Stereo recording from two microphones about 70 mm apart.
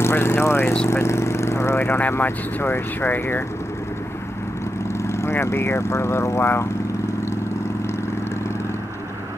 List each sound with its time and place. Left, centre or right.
0.0 s speech: left
5.0 s speech: left